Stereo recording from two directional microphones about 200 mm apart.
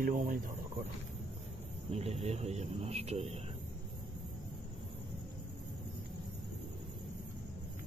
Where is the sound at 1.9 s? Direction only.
30° right (ahead or behind).